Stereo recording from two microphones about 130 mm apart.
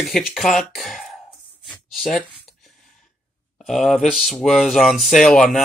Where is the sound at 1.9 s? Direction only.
Centre (ahead or behind).